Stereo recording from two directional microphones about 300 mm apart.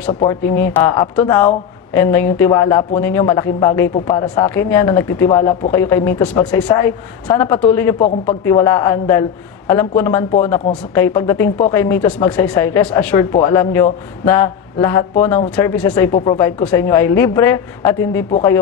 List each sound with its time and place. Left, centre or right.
0.2 s speech: centre
16.1 s speech: left
16.3 s speech: centre